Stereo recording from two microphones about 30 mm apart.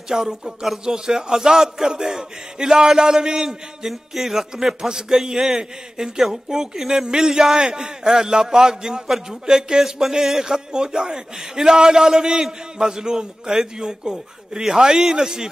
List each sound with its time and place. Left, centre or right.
0.1 s a man's voice: centre
4.8 s a man's voice: right
10.4 s a man's voice: right
14.1 s a man's voice: centre